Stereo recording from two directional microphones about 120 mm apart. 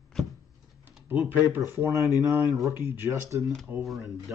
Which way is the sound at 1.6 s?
20° right (ahead or behind).